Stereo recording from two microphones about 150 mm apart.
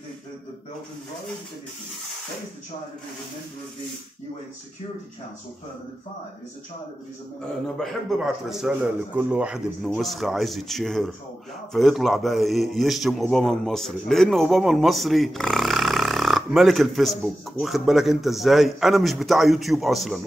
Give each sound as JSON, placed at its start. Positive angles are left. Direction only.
{"t": 7.6, "sound": "a man's voice", "side_deg": 0}